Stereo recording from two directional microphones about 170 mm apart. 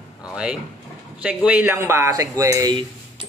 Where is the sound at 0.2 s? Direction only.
5° right (ahead or behind).